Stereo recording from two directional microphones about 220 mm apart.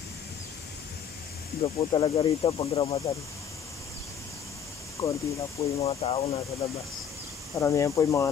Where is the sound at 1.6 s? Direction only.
20° left (ahead or behind).